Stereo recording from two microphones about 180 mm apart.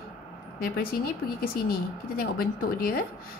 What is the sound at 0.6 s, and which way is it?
A woman's voice, 55° left (ahead or behind).